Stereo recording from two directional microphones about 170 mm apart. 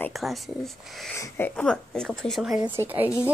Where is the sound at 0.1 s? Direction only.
Centre (ahead or behind).